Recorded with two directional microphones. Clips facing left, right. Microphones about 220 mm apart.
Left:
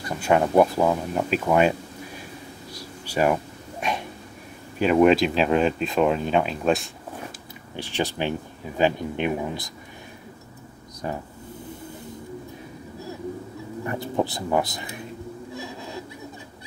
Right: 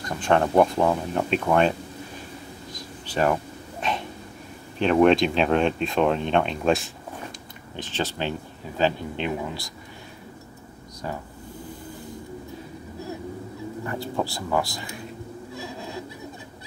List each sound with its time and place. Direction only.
0.0 s speech: 10° left (ahead or behind)
2.7 s a sound: 10° left (ahead or behind)
3.8 s dog: 10° left (ahead or behind)
4.7 s speech: 5° left (ahead or behind)
7.7 s speech: 10° left (ahead or behind)
11.0 s speech: 20° left (ahead or behind)
13.8 s speech: 20° left (ahead or behind)